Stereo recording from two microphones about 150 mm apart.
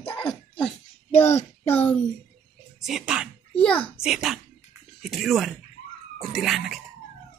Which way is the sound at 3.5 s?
5° left (ahead or behind).